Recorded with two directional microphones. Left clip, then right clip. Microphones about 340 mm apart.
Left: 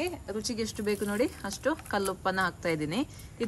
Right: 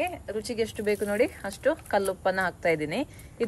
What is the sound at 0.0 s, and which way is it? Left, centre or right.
Speech, centre.